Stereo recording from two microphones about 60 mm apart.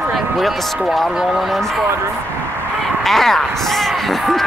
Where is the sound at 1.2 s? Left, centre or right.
Centre.